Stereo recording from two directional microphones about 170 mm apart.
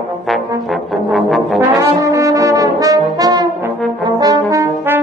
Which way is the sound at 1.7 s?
20° right (ahead or behind).